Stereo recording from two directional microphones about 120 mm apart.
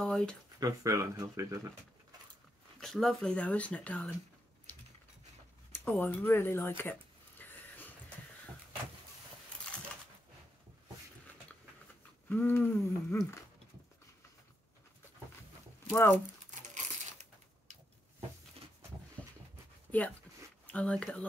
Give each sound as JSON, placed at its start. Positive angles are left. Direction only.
{"t": 0.0, "sound": "speech", "side_deg": 5}
{"t": 0.6, "sound": "speech", "side_deg": -30}
{"t": 2.8, "sound": "speech", "side_deg": 0}
{"t": 5.7, "sound": "speech", "side_deg": 15}
{"t": 6.8, "sound": "a sound", "side_deg": 15}
{"t": 12.3, "sound": "speech", "side_deg": 15}
{"t": 15.9, "sound": "speech", "side_deg": 20}
{"t": 16.4, "sound": "a sound", "side_deg": -90}
{"t": 19.2, "sound": "dog", "side_deg": 10}
{"t": 20.6, "sound": "speech", "side_deg": 10}